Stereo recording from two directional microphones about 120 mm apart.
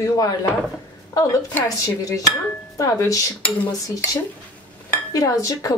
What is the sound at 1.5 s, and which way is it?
Speech, 25° left (ahead or behind).